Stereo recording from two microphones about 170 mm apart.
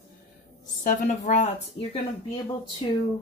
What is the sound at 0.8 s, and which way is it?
Speech, 50° left (ahead or behind).